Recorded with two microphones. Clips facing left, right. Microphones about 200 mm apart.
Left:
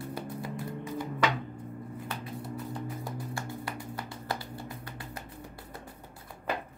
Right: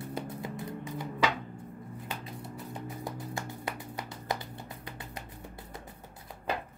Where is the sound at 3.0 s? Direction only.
20° right (ahead or behind).